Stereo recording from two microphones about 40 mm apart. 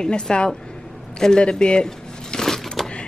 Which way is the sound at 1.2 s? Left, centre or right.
Left.